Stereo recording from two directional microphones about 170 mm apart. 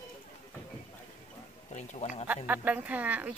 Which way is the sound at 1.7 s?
45° left (ahead or behind).